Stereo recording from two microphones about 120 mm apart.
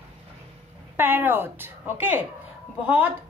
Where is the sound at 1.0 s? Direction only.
15° right (ahead or behind).